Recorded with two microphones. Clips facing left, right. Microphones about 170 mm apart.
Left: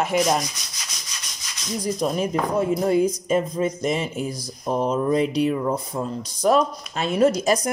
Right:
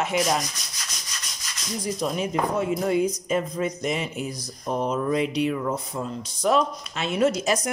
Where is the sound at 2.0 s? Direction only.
40° left (ahead or behind).